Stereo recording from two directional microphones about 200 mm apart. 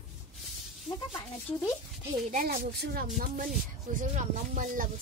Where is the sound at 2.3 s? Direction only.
50° right (ahead or behind).